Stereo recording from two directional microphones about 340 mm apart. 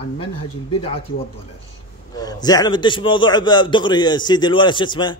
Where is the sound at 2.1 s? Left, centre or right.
Centre.